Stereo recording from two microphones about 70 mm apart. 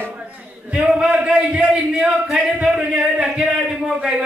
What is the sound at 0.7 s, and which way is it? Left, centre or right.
A man's voice, centre.